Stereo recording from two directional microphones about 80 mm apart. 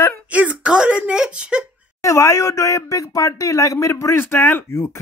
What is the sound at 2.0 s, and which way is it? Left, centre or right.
Speech, left.